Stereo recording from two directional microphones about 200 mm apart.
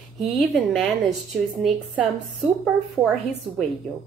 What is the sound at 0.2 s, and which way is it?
A woman's voice, centre (ahead or behind).